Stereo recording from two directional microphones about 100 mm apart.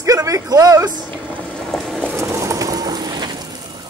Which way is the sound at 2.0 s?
30° right (ahead or behind).